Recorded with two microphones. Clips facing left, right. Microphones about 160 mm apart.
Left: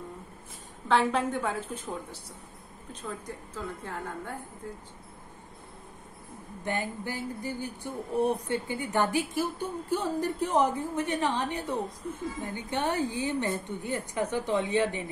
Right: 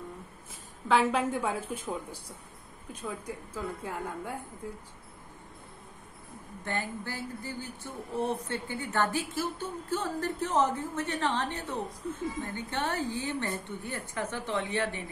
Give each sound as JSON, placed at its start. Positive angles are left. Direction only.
{"t": 0.8, "sound": "a woman's voice", "side_deg": -5}
{"t": 6.6, "sound": "speech", "side_deg": 15}